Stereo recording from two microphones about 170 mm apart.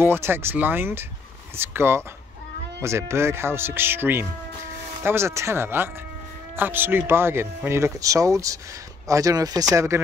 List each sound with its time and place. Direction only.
0.0 s speech: 15° right (ahead or behind)